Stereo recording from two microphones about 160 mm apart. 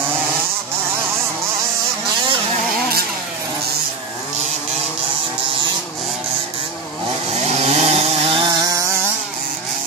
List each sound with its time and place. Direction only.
7.4 s chainsaw: 40° right (ahead or behind); by 8.8 s 25° right (ahead or behind)